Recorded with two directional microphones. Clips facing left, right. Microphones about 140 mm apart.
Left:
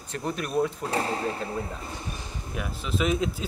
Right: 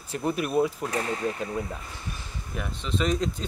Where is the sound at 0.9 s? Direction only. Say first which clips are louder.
Left 1 dB; 30° left (ahead or behind).